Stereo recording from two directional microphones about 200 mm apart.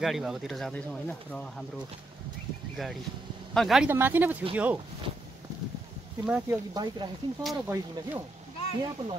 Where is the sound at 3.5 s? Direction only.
Centre (ahead or behind).